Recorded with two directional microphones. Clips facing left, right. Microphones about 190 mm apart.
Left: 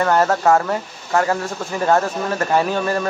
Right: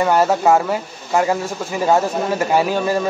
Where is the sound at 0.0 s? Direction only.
10° right (ahead or behind).